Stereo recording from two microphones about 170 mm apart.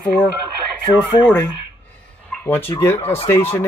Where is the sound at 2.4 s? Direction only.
10° left (ahead or behind).